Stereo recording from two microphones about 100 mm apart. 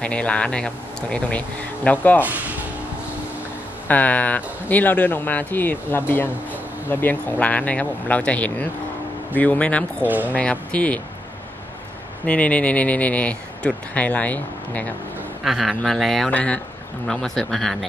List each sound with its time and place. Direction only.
0.0 s speech: 10° left (ahead or behind)
1.9 s speech: 15° left (ahead or behind)
3.8 s speech: 15° left (ahead or behind)
10.0 s speech: 15° right (ahead or behind)
10.3 s speech: 15° left (ahead or behind)
12.3 s speech: 10° left (ahead or behind)
15.4 s speech: 5° right (ahead or behind)
16.3 s speech: 10° left (ahead or behind)